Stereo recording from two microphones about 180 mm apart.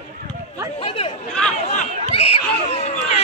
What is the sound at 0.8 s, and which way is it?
Chatter, 30° left (ahead or behind).